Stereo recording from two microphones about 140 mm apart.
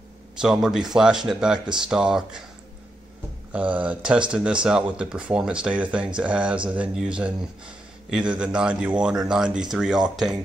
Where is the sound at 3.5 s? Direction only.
10° right (ahead or behind).